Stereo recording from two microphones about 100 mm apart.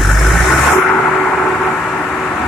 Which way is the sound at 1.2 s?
15° left (ahead or behind).